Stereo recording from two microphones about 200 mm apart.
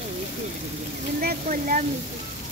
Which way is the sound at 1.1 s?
45° right (ahead or behind).